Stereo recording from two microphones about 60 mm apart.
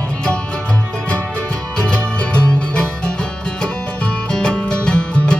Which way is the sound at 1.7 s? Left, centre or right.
Centre.